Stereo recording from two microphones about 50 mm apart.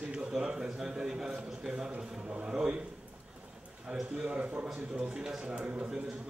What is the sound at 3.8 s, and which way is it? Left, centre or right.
Speech, centre.